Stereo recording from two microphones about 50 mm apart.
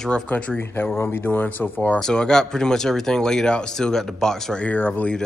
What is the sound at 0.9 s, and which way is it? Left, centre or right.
Speech, left.